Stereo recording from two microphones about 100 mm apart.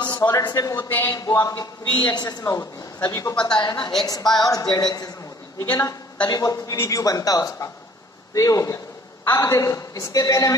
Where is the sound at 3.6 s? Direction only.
50° left (ahead or behind).